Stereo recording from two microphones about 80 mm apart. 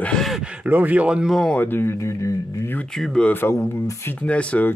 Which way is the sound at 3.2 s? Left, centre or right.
Left.